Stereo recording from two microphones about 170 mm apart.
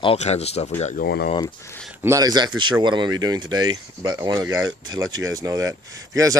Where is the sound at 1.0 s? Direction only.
65° left (ahead or behind).